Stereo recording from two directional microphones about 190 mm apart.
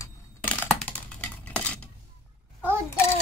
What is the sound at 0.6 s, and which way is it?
Typing, centre (ahead or behind).